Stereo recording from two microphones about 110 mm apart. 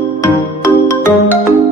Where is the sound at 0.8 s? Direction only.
20° left (ahead or behind).